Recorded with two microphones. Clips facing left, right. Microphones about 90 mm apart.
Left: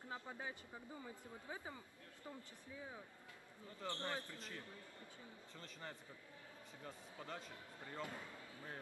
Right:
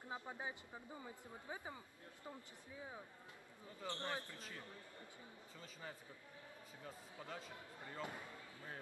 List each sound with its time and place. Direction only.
0.1 s speech: 15° right (ahead or behind)
5.6 s speech: 5° right (ahead or behind)